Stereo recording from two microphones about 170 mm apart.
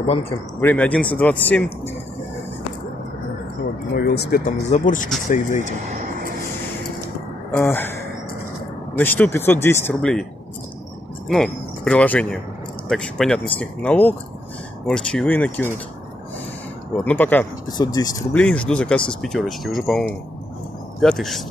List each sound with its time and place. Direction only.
0.0 s speech: 35° left (ahead or behind)
0.6 s speech: 10° left (ahead or behind)
3.9 s speech: 70° left (ahead or behind)
4.6 s speech: 45° left (ahead or behind)
7.5 s speech: 10° left (ahead or behind)
11.2 s speech: centre (ahead or behind)
17.0 s speech: 10° left (ahead or behind)
17.6 s speech: 20° left (ahead or behind)
18.3 s speech: 5° left (ahead or behind)